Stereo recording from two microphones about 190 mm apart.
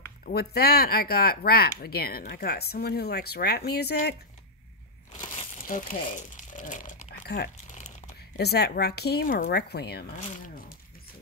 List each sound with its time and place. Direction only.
0.2 s speech: 55° left (ahead or behind)
5.6 s crumpling: 45° left (ahead or behind)
7.2 s speech: 60° left (ahead or behind)
10.2 s speech: 40° left (ahead or behind)